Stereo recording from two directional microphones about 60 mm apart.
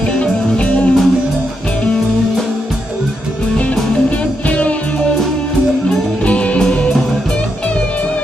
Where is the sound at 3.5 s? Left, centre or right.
Centre.